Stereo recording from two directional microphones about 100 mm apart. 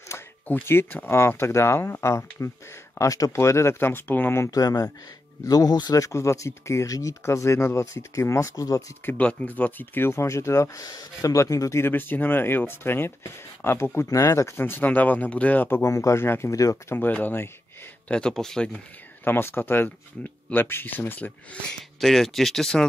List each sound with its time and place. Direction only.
0.1 s a sound: 25° left (ahead or behind)
0.5 s speech: 20° left (ahead or behind)
4.5 s speech: 35° left (ahead or behind)
9.0 s speech: 15° left (ahead or behind); by 11.8 s 35° left (ahead or behind)
11.8 s speech: 20° left (ahead or behind)
15.9 s speech: 30° left (ahead or behind)
16.9 s speech: 20° left (ahead or behind)
18.0 s speech: 10° left (ahead or behind)
19.2 s speech: 20° left (ahead or behind)
22.0 s speech: centre (ahead or behind)